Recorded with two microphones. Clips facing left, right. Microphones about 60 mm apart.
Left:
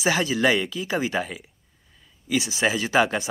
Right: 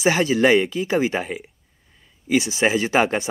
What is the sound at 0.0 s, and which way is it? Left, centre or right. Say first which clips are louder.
Speech: right 4 dB; right.